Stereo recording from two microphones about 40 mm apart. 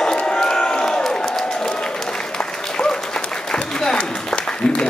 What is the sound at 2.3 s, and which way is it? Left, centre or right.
Applause, centre.